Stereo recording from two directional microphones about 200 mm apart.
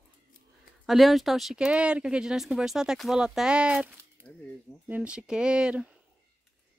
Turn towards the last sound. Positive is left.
turn(degrees=-5)  # may be behind; listen again after turning